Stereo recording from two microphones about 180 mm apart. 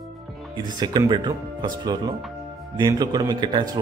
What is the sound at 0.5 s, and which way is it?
Speech, 25° right (ahead or behind).